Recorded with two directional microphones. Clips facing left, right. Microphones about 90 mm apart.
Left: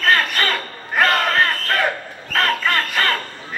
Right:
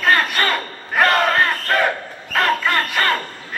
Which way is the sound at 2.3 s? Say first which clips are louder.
Right 1 dB; 5° right (ahead or behind).